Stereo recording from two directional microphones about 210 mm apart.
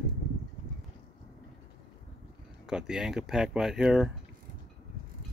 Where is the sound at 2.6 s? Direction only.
5° right (ahead or behind).